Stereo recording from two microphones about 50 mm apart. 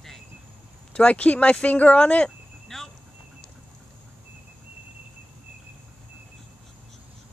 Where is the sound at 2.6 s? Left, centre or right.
Centre.